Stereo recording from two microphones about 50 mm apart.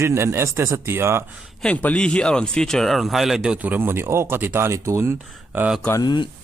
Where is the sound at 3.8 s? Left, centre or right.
Right.